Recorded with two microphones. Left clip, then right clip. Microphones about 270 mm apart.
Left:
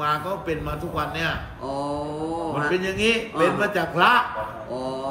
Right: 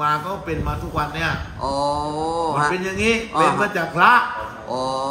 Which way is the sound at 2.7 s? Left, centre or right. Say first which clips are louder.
Right 1 dB; centre.